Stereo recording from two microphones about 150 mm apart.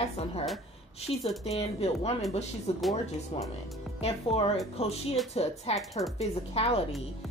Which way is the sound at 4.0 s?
40° left (ahead or behind).